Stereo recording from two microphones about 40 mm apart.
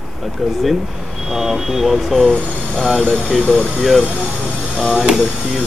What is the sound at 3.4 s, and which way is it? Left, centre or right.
Speech, centre.